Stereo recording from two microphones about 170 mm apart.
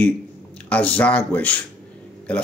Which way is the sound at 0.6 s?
10° left (ahead or behind).